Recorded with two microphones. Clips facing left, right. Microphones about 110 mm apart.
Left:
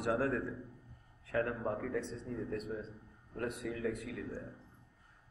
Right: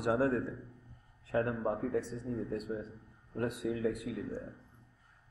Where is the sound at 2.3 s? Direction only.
20° right (ahead or behind).